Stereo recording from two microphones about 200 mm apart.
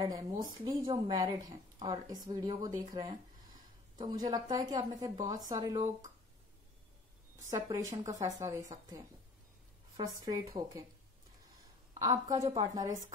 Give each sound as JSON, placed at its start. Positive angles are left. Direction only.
{"t": 0.4, "sound": "a woman's voice", "side_deg": -25}
{"t": 7.4, "sound": "a woman's voice", "side_deg": -15}
{"t": 9.9, "sound": "speech", "side_deg": -20}
{"t": 12.0, "sound": "speech", "side_deg": -20}